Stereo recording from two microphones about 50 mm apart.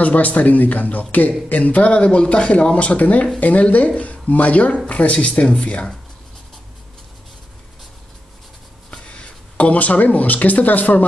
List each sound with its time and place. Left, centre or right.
0.0 s speech: left
8.9 s speech: left